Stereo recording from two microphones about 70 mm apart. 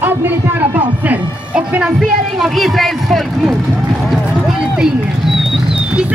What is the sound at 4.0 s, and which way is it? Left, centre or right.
Speech, centre.